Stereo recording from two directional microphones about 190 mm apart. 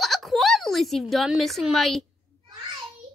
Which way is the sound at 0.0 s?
Centre (ahead or behind).